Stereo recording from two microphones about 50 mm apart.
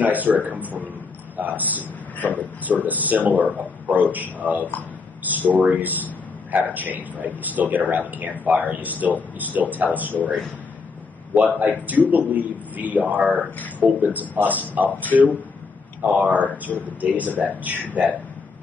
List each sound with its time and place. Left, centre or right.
0.0 s a man's voice: right
11.3 s a man's voice: right
15.1 s a man's voice: right
16.7 s speech: left
17.0 s a man's voice: right